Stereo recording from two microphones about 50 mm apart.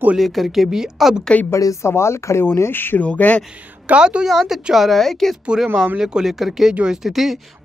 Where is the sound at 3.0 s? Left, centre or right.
Left.